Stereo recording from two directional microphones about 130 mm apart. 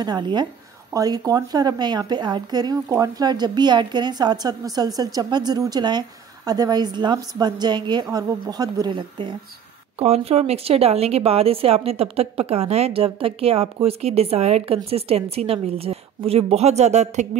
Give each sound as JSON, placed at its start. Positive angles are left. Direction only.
{"t": 0.0, "sound": "a woman's voice", "side_deg": -35}
{"t": 9.9, "sound": "a woman's voice", "side_deg": -50}